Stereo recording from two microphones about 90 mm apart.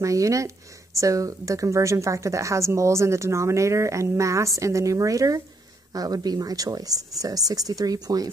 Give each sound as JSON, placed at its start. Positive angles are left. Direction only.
{"t": 0.0, "sound": "speech", "side_deg": -35}